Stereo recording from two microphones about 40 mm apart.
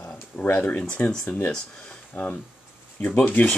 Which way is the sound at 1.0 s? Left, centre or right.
Left.